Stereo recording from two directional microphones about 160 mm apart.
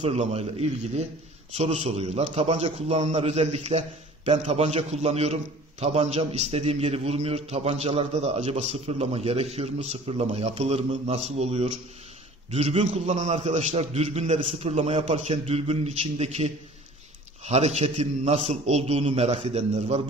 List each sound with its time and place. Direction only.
0.0 s a man's voice: 40° right (ahead or behind)